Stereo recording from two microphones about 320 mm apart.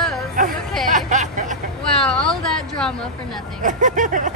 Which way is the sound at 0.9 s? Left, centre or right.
Right.